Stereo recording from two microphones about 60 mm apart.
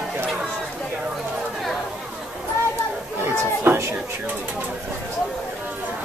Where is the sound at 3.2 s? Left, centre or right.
Right.